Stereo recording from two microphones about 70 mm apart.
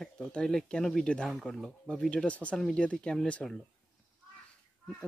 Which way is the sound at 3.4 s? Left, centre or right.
Centre.